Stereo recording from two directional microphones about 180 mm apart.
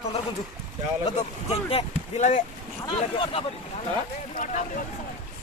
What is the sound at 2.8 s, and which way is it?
Speech, 30° left (ahead or behind).